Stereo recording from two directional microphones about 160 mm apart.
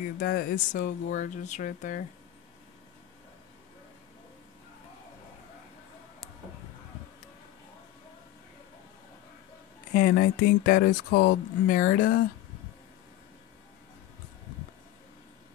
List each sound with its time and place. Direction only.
0.2 s speech: 70° left (ahead or behind)
9.9 s speech: 60° left (ahead or behind)